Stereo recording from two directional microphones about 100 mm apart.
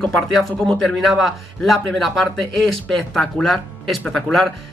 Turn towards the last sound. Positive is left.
turn(degrees=5)  # may be behind; listen again after turning